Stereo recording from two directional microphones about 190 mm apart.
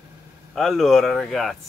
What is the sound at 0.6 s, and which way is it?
Speech, centre (ahead or behind).